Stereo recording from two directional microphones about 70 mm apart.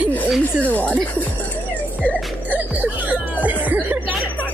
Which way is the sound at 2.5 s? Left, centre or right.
Right.